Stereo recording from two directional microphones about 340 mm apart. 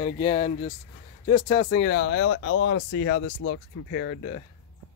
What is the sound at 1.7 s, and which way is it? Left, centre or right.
Speech, left.